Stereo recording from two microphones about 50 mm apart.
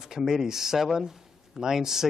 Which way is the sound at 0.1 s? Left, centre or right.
Centre.